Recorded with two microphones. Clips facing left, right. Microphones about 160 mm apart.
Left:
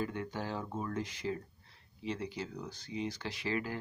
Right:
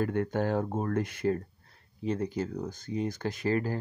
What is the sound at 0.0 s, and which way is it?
Speech, 55° right (ahead or behind).